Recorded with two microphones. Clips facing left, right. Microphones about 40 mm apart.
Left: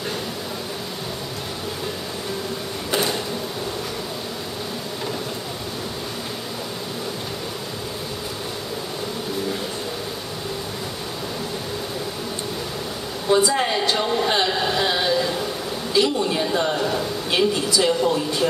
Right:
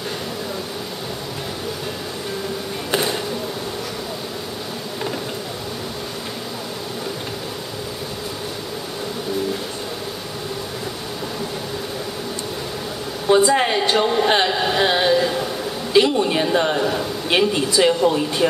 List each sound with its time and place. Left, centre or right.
13.3 s a woman's voice: right
14.5 s a sound: centre
15.9 s a woman's voice: right; by 17.1 s centre
17.3 s a woman's voice: right